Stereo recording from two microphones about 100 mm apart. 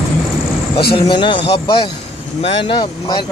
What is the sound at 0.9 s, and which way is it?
Speech, 55° left (ahead or behind).